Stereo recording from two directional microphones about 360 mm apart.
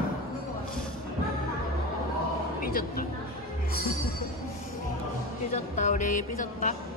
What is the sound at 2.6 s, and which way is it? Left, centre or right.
Speech, left.